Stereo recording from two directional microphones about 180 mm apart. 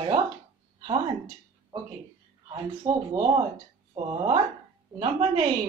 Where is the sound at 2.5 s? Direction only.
20° right (ahead or behind).